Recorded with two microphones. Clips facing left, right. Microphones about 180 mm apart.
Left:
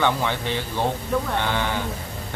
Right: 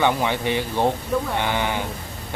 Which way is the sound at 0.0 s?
15° right (ahead or behind).